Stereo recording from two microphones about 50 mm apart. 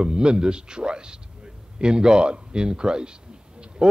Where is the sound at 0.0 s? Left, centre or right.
Centre.